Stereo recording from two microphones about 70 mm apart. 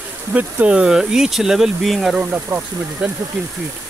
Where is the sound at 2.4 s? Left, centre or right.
Right.